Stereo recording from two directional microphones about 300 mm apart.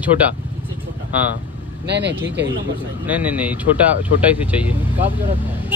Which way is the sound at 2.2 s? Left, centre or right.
Centre.